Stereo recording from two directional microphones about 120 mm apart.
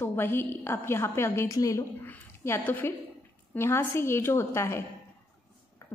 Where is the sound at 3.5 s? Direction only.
20° left (ahead or behind).